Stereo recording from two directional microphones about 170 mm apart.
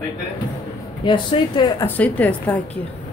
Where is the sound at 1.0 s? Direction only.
25° left (ahead or behind).